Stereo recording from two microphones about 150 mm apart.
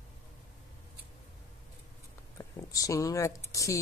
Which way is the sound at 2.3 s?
20° left (ahead or behind).